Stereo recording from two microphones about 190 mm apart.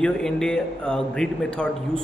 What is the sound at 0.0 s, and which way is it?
Speech, 5° left (ahead or behind).